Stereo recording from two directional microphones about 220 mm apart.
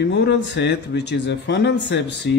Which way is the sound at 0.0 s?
50° left (ahead or behind).